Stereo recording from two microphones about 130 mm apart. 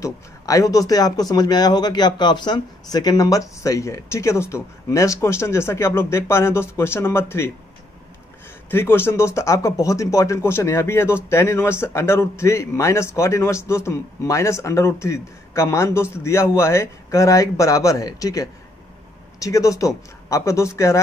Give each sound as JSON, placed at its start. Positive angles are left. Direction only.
{"t": 0.0, "sound": "speech", "side_deg": 25}
{"t": 8.6, "sound": "speech", "side_deg": 15}